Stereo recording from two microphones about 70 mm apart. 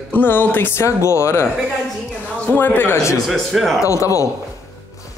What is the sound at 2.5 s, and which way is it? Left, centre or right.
Music, left.